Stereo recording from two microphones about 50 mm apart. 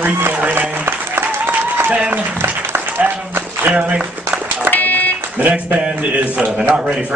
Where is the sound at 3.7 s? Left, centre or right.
Right.